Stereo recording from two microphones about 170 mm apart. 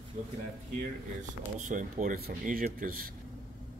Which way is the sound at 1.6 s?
50° right (ahead or behind).